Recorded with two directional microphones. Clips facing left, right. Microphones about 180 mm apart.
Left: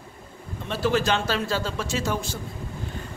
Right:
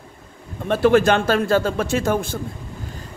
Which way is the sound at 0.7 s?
55° right (ahead or behind).